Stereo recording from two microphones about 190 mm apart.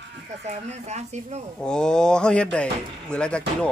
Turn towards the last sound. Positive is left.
turn(degrees=5)  # may be behind; listen again after turning